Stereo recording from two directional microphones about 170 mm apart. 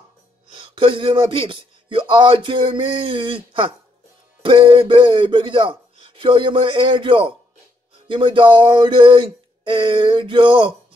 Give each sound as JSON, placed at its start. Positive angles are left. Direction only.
{"t": 0.6, "sound": "speech", "side_deg": -30}